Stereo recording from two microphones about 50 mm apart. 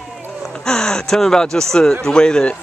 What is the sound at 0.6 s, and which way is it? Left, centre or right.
Speech, centre.